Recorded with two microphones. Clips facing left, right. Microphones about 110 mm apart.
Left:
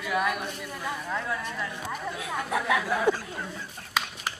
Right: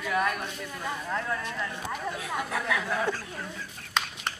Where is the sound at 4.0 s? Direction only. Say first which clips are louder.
Even; 5° left (ahead or behind).